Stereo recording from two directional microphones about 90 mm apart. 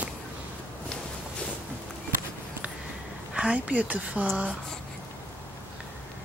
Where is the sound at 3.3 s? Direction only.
10° right (ahead or behind).